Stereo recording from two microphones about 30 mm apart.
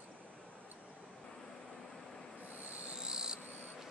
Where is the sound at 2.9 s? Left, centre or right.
Right.